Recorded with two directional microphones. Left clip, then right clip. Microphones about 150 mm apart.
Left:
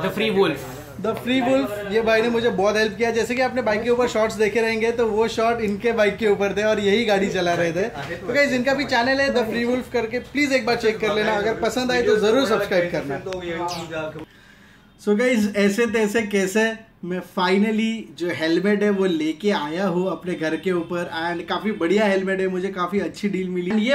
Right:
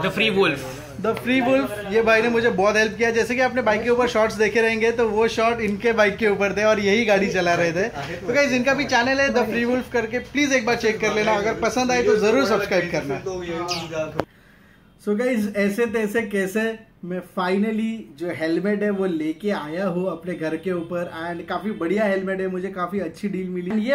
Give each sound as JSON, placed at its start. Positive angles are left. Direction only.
{"t": 0.0, "sound": "a man's voice", "side_deg": 25}
{"t": 1.0, "sound": "a man's voice", "side_deg": -5}
{"t": 15.0, "sound": "speech", "side_deg": 10}